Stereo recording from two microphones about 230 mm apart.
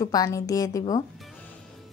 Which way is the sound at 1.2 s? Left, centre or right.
Centre.